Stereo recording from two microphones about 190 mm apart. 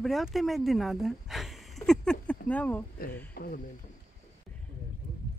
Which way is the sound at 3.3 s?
50° left (ahead or behind).